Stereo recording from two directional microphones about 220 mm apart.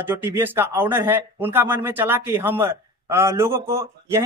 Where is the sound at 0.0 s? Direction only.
10° right (ahead or behind).